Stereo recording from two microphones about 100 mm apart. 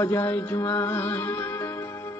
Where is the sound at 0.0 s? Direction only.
25° left (ahead or behind).